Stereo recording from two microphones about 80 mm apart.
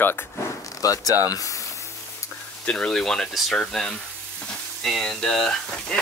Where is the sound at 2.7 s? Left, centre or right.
Centre.